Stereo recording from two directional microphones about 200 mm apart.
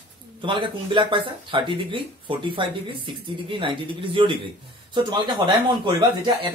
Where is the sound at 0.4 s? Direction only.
25° right (ahead or behind).